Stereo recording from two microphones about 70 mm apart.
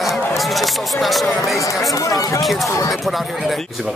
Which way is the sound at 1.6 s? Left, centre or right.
Left.